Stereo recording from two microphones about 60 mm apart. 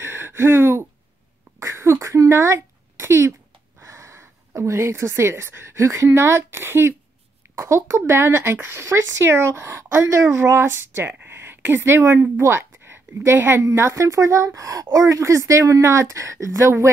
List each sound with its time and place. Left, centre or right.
0.0 s a sound: right
3.8 s speech: right
7.5 s a woman's voice: right
13.7 s speech: right